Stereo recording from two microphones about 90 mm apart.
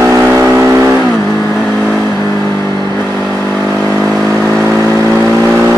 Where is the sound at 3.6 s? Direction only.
35° right (ahead or behind).